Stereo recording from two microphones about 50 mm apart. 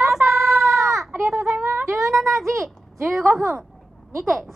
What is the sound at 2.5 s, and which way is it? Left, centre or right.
Speech, right.